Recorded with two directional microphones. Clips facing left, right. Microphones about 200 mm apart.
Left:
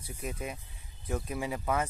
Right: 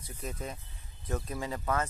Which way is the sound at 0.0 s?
10° left (ahead or behind).